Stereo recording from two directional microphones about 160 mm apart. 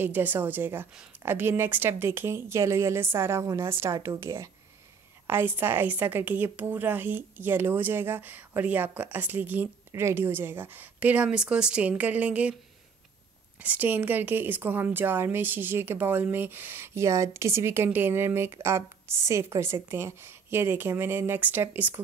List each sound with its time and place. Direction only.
0.0 s a woman's voice: 10° right (ahead or behind)
13.6 s a woman's voice: 10° right (ahead or behind)